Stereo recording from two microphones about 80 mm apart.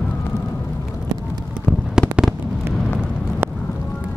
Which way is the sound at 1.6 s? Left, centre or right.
Centre.